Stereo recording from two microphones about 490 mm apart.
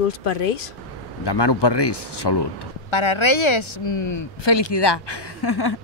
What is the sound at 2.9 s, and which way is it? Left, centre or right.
Speech, left.